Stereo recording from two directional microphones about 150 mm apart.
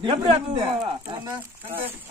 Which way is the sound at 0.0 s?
30° right (ahead or behind).